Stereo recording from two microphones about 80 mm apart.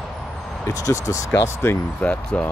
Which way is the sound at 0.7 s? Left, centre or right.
Left.